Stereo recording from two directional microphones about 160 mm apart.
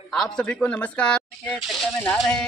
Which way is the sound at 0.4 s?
5° left (ahead or behind).